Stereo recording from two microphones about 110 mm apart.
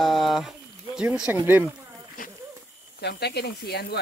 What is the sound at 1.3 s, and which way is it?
Speech, 20° right (ahead or behind).